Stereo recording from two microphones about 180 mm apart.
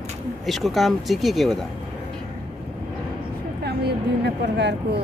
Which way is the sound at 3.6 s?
65° right (ahead or behind).